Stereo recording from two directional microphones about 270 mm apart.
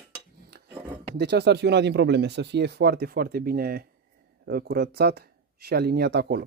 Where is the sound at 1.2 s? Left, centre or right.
Right.